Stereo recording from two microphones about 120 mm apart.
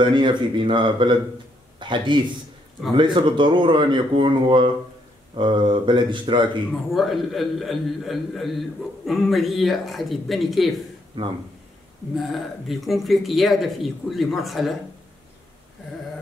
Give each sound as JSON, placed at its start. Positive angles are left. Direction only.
{"t": 0.0, "sound": "a man's voice", "side_deg": -40}
{"t": 6.7, "sound": "a man's voice", "side_deg": 0}
{"t": 11.1, "sound": "speech", "side_deg": -45}
{"t": 12.2, "sound": "a man's voice", "side_deg": 0}